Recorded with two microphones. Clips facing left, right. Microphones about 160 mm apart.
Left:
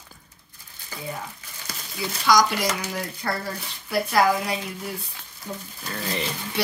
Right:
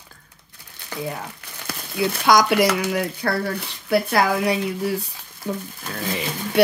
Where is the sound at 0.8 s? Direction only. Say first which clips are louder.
Right 5 dB; 70° right (ahead or behind).